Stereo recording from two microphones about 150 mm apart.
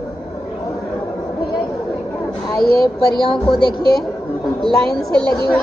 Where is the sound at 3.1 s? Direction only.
30° left (ahead or behind).